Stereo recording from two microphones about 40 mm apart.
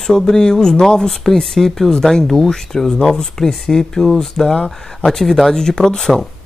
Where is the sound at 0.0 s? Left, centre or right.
Centre.